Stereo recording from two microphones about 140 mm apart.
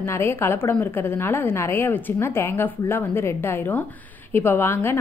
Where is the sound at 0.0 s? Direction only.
20° left (ahead or behind).